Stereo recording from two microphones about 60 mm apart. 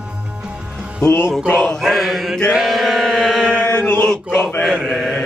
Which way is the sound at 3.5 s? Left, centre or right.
Left.